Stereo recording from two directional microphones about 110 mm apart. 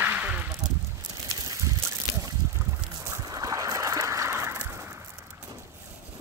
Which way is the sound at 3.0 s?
30° right (ahead or behind).